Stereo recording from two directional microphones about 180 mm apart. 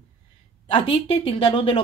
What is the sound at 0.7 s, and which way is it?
Speech, 30° left (ahead or behind).